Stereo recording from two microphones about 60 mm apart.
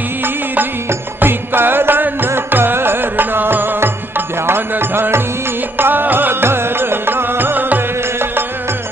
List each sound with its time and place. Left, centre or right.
0.2 s music: right